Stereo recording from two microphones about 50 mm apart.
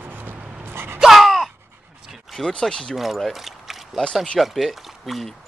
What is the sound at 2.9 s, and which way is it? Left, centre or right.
Speech, centre.